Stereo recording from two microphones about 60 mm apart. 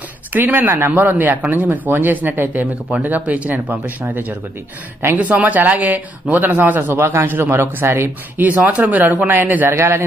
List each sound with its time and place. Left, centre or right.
0.3 s speech: right
6.9 s speech: right
7.2 s speech: right
8.4 s speech: right